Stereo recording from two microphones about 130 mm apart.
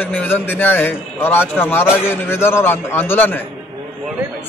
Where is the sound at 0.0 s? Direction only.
15° left (ahead or behind).